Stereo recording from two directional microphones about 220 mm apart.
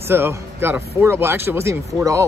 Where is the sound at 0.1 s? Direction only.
10° right (ahead or behind).